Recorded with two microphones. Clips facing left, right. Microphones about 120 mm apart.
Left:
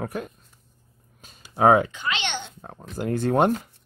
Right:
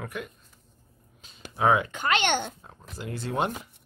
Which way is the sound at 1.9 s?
50° right (ahead or behind).